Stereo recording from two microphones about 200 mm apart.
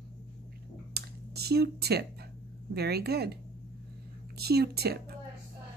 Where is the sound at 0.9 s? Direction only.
55° right (ahead or behind).